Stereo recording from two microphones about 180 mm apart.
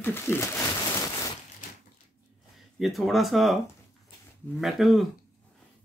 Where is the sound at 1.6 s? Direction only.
45° left (ahead or behind).